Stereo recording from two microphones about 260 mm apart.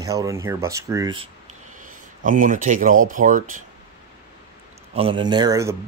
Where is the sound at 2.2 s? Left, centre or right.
Right.